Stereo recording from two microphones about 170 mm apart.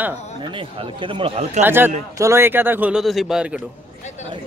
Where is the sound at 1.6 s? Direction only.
10° right (ahead or behind).